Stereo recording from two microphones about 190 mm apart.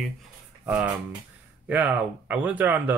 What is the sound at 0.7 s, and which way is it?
Speech, 10° right (ahead or behind).